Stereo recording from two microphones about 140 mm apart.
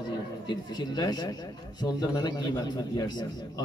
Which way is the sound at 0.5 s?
30° left (ahead or behind).